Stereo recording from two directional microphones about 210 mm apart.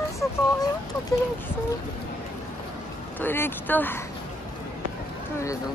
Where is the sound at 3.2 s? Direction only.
10° left (ahead or behind).